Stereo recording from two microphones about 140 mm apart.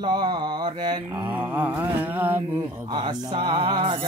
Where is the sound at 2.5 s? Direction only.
35° right (ahead or behind).